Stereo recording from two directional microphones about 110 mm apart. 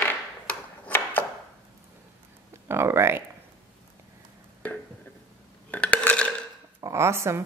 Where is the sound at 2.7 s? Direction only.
25° right (ahead or behind).